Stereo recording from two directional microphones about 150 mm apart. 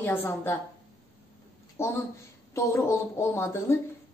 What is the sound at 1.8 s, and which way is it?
A woman's voice, 15° left (ahead or behind).